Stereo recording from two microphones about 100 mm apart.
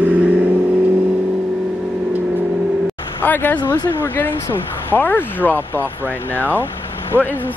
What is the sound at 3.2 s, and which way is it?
Speech, 20° left (ahead or behind).